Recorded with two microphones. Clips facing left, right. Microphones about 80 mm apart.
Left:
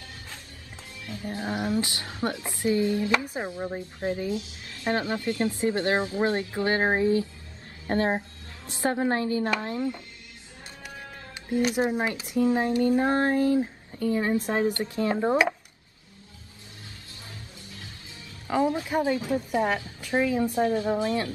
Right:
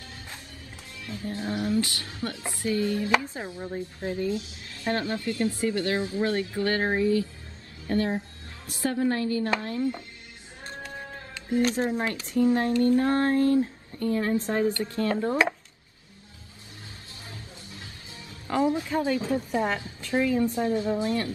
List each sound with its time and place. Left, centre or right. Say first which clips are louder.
1.0 s speech: even; left
11.6 s speech: left 2 dB; centre
17.3 s music: right 2 dB; right
18.5 s a woman's voice: even; left